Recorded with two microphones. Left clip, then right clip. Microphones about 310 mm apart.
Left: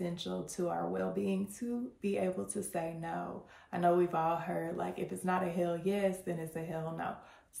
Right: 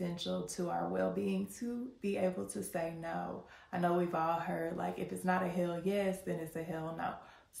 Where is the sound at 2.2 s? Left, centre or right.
Centre.